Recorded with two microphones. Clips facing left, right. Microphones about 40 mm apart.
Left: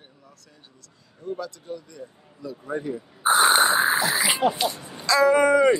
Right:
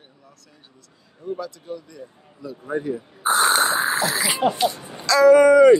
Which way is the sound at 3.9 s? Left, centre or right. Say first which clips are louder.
Even; centre.